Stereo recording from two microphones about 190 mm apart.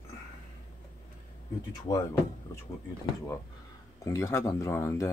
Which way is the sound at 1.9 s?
20° left (ahead or behind).